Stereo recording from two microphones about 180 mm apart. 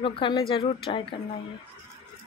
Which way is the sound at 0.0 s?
30° left (ahead or behind).